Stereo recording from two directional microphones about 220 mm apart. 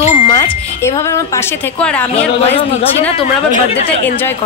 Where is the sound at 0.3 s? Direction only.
15° left (ahead or behind).